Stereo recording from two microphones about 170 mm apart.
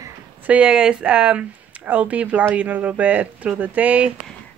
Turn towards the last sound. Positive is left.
turn(degrees=-10)  # may be behind; listen again after turning